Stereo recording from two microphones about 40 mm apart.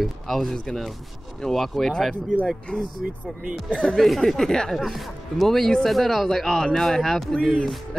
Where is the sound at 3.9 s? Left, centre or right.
Centre.